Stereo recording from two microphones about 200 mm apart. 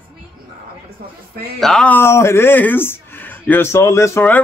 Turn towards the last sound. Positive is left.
turn(degrees=10)  # may be behind; listen again after turning